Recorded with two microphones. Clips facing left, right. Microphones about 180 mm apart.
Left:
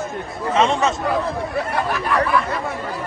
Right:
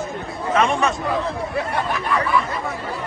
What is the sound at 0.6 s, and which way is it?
Speech, 25° left (ahead or behind).